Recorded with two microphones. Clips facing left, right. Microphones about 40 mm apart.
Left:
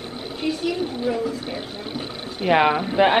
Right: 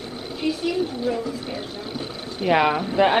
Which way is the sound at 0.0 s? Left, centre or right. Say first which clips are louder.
Left 1 dB; left.